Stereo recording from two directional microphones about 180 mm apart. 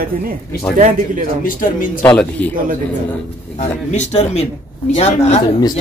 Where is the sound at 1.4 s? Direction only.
50° left (ahead or behind).